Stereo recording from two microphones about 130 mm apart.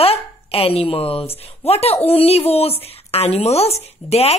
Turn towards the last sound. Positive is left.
turn(degrees=55)  # may be behind; listen again after turning